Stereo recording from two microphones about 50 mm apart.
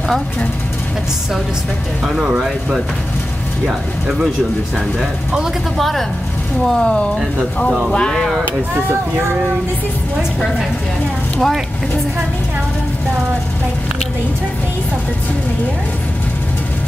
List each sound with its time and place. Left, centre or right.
2.1 s speech: centre
5.8 s speech: centre
6.8 s speech: centre
11.3 s speech: centre